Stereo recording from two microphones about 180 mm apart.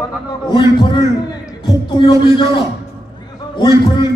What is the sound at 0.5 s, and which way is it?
A man's voice, 25° left (ahead or behind).